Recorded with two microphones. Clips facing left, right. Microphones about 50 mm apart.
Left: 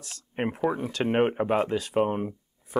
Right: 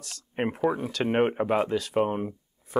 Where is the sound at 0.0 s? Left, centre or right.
Centre.